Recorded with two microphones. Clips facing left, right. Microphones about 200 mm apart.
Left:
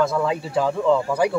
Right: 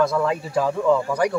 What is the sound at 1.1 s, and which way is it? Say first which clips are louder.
Speech: left 1 dB; 5° left (ahead or behind).